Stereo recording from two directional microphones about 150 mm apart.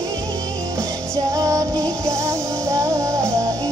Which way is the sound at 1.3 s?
25° right (ahead or behind).